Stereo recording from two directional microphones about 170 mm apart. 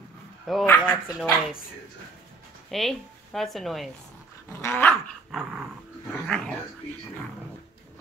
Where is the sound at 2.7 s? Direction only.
Centre (ahead or behind).